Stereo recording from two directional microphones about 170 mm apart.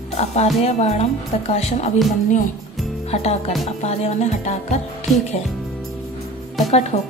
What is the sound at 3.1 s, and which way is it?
Speech, 40° left (ahead or behind).